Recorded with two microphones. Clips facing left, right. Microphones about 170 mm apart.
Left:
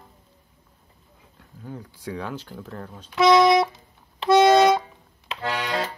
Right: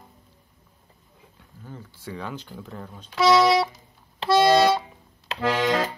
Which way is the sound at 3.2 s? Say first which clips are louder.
Left 2 dB; 20° left (ahead or behind).